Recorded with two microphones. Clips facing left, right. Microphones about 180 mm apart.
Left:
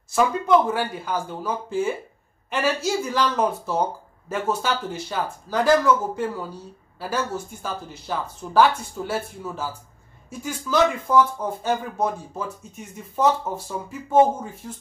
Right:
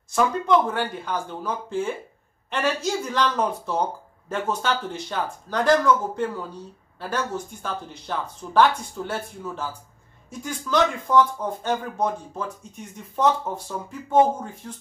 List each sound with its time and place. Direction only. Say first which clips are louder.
0.1 s speech: left 2 dB; 5° left (ahead or behind)